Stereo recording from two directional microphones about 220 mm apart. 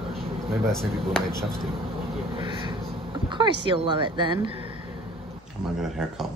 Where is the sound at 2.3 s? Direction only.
20° right (ahead or behind).